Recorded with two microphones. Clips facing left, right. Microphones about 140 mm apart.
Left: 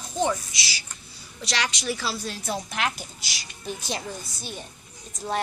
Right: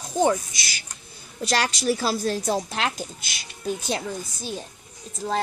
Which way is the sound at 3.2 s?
55° right (ahead or behind).